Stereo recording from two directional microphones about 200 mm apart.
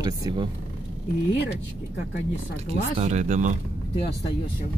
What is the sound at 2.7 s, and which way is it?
Speech, 35° right (ahead or behind).